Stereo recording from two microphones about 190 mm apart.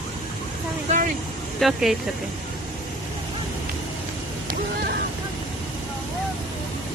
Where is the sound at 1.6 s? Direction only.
Centre (ahead or behind).